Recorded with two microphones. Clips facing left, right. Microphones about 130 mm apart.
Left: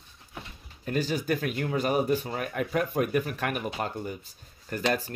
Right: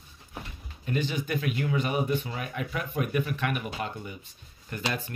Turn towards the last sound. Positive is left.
turn(degrees=40)  # may be behind; listen again after turning